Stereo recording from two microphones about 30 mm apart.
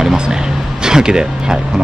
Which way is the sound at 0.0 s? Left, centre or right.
Right.